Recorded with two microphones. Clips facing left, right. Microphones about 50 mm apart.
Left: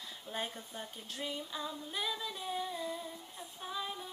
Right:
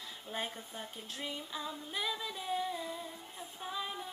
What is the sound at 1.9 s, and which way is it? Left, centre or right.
Music, centre.